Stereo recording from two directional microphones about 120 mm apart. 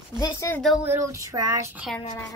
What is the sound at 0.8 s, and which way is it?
Child singing, 20° right (ahead or behind).